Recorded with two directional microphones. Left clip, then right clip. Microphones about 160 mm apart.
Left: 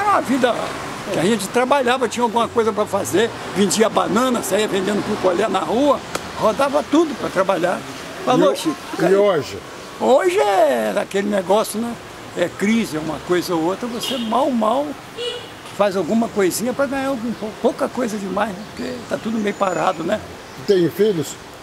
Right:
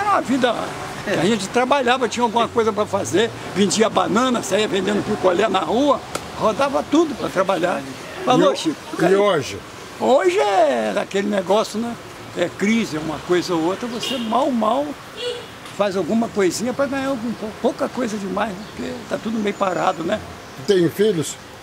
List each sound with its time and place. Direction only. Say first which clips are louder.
0.0 s a man's voice: left 1 dB; centre (ahead or behind)
15.8 s speech: left 2 dB; centre (ahead or behind)